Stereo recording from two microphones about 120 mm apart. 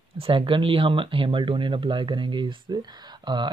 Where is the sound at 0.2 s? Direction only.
50° right (ahead or behind).